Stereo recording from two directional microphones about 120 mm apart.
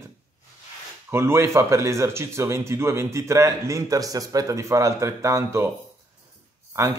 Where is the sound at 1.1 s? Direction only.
20° right (ahead or behind).